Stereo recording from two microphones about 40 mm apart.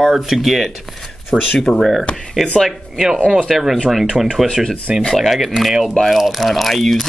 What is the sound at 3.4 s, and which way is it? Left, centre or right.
Speech, centre.